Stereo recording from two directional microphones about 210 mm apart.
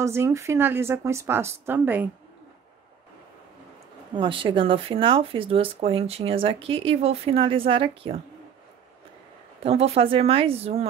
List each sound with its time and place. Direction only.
0.0 s a woman's voice: 15° right (ahead or behind)
4.1 s speech: 25° right (ahead or behind)
9.6 s speech: 30° right (ahead or behind)